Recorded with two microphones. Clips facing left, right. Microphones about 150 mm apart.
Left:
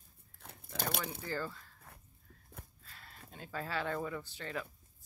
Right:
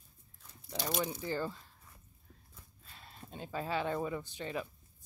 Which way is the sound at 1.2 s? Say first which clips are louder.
Right 3 dB; 20° right (ahead or behind).